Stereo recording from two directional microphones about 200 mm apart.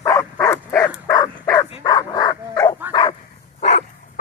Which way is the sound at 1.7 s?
25° left (ahead or behind).